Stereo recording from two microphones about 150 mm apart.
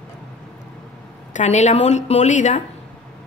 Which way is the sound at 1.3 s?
50° left (ahead or behind).